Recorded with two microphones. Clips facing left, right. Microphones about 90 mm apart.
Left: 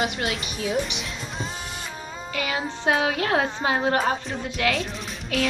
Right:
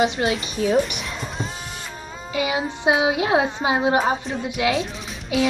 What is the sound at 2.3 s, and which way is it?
A woman's voice, 15° right (ahead or behind).